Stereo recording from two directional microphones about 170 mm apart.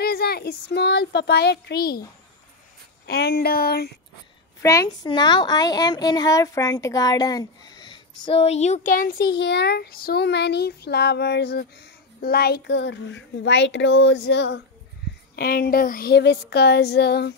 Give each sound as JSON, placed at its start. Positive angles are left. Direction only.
{"t": 0.0, "sound": "speech", "side_deg": 65}
{"t": 3.1, "sound": "speech", "side_deg": 70}
{"t": 4.6, "sound": "a woman's voice", "side_deg": 20}
{"t": 8.3, "sound": "speech", "side_deg": 35}
{"t": 15.0, "sound": "a sound", "side_deg": 70}
{"t": 15.3, "sound": "speech", "side_deg": 65}